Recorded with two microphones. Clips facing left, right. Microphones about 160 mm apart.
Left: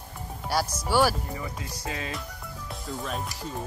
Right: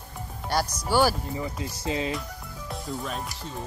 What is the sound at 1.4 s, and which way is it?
Speech, 25° right (ahead or behind).